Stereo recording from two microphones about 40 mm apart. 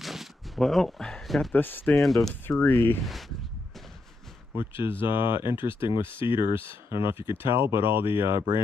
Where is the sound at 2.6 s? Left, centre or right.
Left.